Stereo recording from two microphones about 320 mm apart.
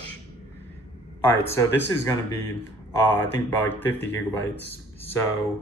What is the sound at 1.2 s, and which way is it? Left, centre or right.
Speech, centre.